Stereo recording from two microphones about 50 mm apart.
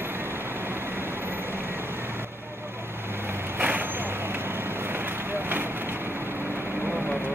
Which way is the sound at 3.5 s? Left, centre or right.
Right.